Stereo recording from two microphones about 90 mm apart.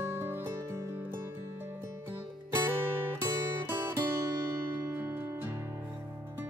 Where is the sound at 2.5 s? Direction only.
25° right (ahead or behind).